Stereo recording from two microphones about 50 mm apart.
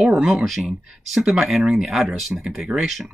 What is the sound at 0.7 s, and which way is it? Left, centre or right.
Speech, centre.